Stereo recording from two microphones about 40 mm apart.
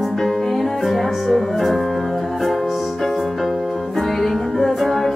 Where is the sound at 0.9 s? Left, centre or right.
Centre.